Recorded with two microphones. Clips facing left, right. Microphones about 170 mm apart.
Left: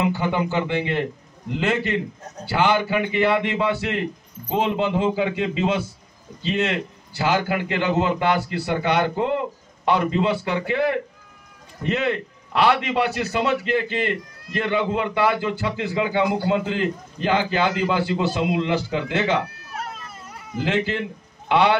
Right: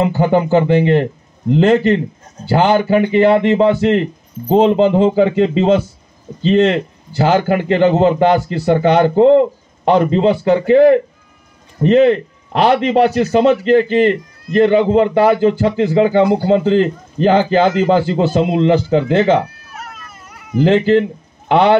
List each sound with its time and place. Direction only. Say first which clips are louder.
0.0 s a man's voice: right 8 dB; 45° right (ahead or behind)
19.8 s vehicle: even; 30° left (ahead or behind)
20.6 s a man's voice: right 12 dB; 45° right (ahead or behind)